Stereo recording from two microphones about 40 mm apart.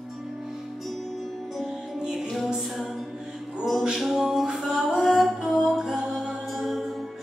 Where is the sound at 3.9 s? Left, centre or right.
Centre.